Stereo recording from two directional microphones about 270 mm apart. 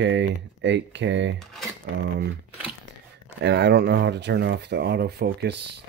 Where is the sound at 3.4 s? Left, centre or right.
Right.